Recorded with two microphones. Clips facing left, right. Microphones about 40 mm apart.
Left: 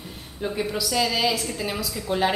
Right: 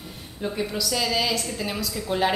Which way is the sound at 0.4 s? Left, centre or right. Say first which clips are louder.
Left 1 dB; centre.